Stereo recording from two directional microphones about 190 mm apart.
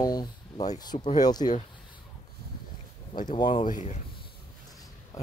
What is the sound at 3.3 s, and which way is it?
Speech, 25° left (ahead or behind).